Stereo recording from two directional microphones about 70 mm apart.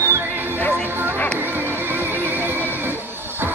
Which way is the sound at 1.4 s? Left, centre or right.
Right.